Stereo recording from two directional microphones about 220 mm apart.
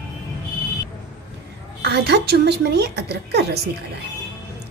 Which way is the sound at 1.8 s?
50° right (ahead or behind).